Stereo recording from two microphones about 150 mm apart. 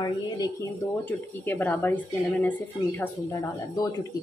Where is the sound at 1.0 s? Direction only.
10° left (ahead or behind).